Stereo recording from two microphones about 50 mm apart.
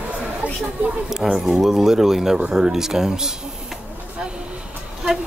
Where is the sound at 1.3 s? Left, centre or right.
Centre.